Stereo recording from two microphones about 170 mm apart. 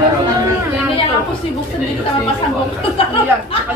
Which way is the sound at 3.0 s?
35° left (ahead or behind).